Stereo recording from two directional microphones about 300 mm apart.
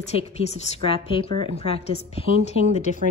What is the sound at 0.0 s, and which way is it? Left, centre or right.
A woman's voice, centre.